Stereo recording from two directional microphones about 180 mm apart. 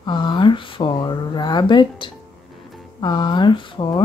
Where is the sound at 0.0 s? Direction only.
25° left (ahead or behind).